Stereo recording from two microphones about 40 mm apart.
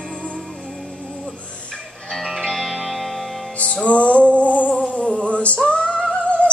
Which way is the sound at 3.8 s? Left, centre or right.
Left.